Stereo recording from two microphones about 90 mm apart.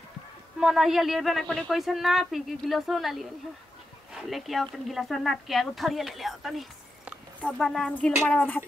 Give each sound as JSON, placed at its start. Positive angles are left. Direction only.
{"t": 0.6, "sound": "a woman's voice", "side_deg": -5}
{"t": 8.3, "sound": "speech", "side_deg": 20}